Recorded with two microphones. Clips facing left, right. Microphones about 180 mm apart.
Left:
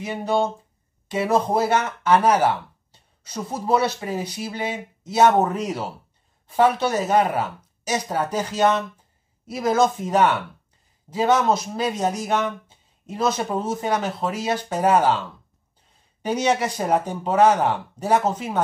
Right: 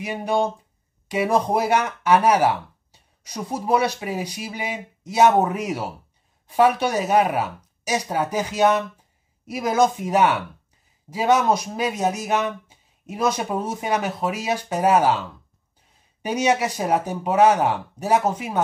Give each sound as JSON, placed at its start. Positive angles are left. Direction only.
{"t": 0.0, "sound": "speech", "side_deg": -15}